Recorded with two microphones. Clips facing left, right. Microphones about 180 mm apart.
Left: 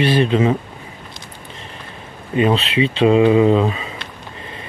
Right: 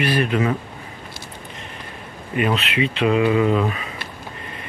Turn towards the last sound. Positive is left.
turn(degrees=25)  # may be behind; listen again after turning